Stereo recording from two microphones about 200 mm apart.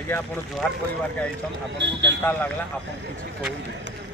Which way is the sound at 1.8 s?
60° right (ahead or behind).